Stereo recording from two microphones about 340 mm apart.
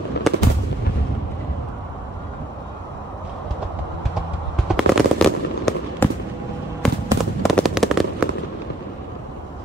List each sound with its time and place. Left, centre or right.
0.2 s fireworks: left
4.6 s fireworks: centre